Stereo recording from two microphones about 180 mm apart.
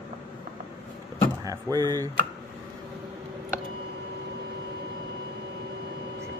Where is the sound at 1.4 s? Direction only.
20° right (ahead or behind).